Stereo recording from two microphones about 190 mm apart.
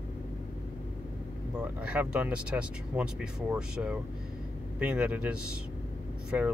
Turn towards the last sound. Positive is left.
turn(degrees=-5)  # may be behind; listen again after turning